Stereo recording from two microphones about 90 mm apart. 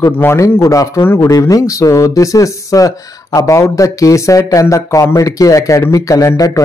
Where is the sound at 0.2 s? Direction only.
30° left (ahead or behind).